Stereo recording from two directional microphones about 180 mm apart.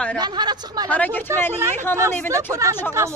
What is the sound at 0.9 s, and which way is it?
Speech, 10° left (ahead or behind).